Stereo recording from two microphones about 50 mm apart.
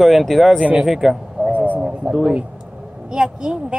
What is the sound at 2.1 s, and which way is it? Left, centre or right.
Speech, centre.